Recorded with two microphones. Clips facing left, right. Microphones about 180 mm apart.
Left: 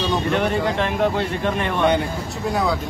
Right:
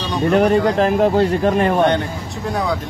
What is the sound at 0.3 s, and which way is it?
Speech, 40° right (ahead or behind).